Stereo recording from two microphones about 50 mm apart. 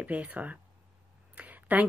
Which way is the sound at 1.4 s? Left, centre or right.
Right.